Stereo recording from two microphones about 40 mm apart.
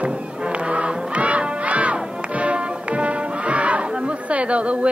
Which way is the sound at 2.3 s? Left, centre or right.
Right.